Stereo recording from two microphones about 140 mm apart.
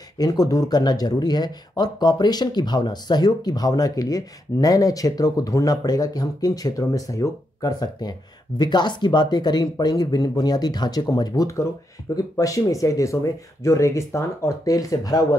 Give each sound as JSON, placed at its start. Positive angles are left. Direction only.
{"t": 0.2, "sound": "speech", "side_deg": 25}